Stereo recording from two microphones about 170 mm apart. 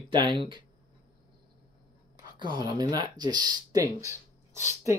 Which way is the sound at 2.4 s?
25° right (ahead or behind).